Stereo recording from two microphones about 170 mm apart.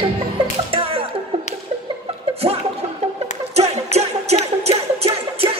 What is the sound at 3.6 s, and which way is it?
Music, 40° right (ahead or behind).